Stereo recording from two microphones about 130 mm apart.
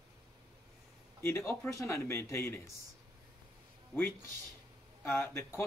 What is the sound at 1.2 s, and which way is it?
Speech, 20° left (ahead or behind).